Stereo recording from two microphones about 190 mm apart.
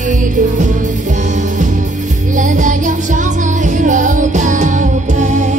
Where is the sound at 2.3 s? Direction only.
40° right (ahead or behind).